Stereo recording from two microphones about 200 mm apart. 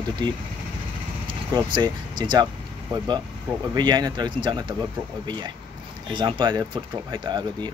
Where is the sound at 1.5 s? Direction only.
20° right (ahead or behind).